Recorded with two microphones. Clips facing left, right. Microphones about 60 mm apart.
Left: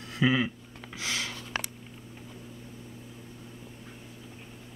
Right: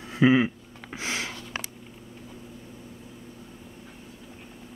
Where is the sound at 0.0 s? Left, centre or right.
Right.